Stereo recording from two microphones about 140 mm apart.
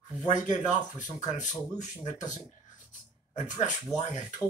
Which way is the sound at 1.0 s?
60° left (ahead or behind).